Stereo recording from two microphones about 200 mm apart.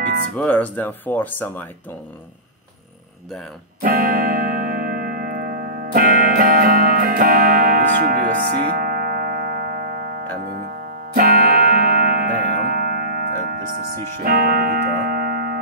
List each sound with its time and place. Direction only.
0.4 s speech: 5° left (ahead or behind)
3.8 s music: 45° right (ahead or behind)